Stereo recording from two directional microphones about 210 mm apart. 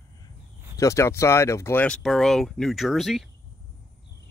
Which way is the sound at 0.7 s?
15° left (ahead or behind).